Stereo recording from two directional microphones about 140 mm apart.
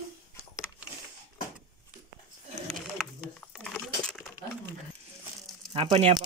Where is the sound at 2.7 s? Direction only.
Centre (ahead or behind).